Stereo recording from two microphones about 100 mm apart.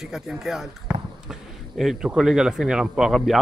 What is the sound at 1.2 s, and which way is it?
Speech, centre (ahead or behind).